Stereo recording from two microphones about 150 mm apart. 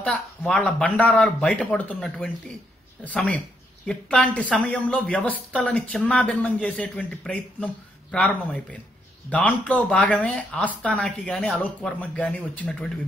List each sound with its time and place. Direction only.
0.0 s speech: 5° left (ahead or behind)